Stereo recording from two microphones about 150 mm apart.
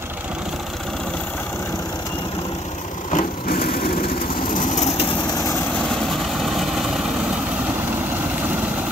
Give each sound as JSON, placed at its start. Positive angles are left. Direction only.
{"t": 3.1, "sound": "light engine", "side_deg": 70}
{"t": 4.5, "sound": "vehicle", "side_deg": 55}
{"t": 6.1, "sound": "vehicle", "side_deg": 0}